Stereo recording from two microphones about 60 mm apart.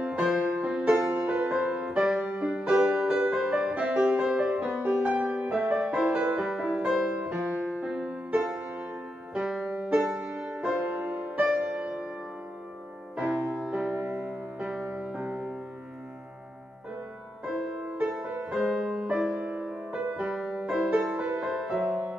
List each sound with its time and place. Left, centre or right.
0.3 s music: right
0.9 s music: right; by 2.2 s centre
2.2 s music: right
4.8 s music: right; by 7.3 s centre
7.5 s music: right
9.8 s music: right
10.2 s music: right
10.5 s music: centre
10.8 s music: right
13.1 s music: centre
17.5 s music: centre
21.5 s music: centre